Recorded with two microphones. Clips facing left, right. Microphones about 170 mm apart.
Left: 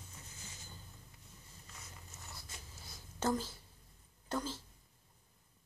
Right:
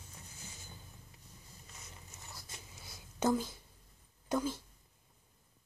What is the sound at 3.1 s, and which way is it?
Speech, 15° right (ahead or behind).